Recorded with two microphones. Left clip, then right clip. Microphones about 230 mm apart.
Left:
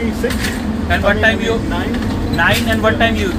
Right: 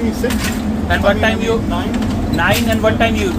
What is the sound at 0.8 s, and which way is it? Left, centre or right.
Speech, centre.